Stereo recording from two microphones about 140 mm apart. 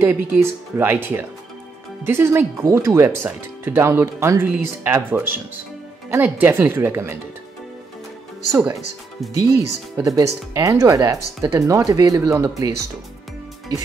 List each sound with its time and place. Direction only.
0.0 s speech: 15° right (ahead or behind)
9.4 s speech: 20° right (ahead or behind)